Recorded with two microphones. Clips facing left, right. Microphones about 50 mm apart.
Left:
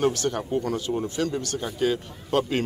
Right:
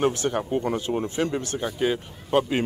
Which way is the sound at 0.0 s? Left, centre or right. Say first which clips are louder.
Right 1 dB; centre.